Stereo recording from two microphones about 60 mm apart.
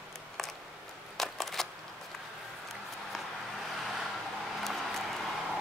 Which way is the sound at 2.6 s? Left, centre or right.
Centre.